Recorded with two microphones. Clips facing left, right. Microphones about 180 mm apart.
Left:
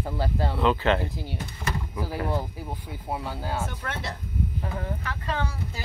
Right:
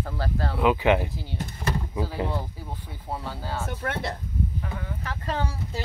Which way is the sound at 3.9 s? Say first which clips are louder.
Right 4 dB; 55° right (ahead or behind).